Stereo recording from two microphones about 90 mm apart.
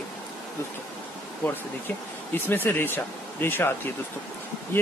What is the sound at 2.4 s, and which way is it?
Speech, 25° left (ahead or behind).